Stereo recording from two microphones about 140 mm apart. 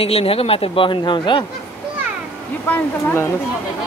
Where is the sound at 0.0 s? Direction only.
45° left (ahead or behind).